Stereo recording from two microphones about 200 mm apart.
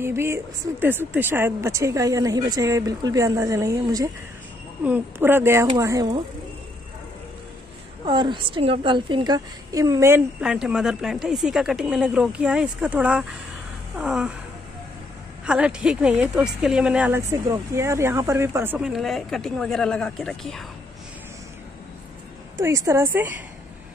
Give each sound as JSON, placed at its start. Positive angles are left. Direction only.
{"t": 0.0, "sound": "speech", "side_deg": -15}
{"t": 8.0, "sound": "a woman's voice", "side_deg": -20}
{"t": 15.4, "sound": "a woman's voice", "side_deg": -5}
{"t": 22.6, "sound": "speech", "side_deg": -15}